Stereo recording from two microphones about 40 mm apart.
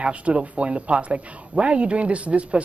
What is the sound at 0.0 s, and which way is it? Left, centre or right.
Speech, right.